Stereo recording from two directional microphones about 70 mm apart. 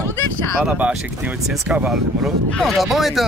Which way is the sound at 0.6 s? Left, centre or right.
Centre.